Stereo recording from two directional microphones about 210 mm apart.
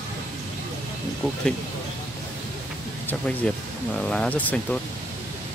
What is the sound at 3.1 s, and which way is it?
Speech, 5° left (ahead or behind).